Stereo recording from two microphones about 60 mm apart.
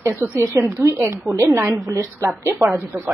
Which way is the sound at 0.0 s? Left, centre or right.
Right.